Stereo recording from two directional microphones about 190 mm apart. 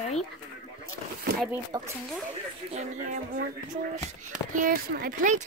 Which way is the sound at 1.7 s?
20° right (ahead or behind).